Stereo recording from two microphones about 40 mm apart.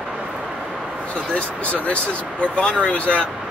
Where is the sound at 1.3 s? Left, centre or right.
Left.